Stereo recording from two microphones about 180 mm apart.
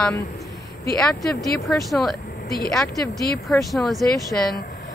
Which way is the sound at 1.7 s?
Centre (ahead or behind).